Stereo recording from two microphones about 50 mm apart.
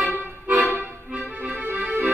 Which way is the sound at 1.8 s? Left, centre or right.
Right.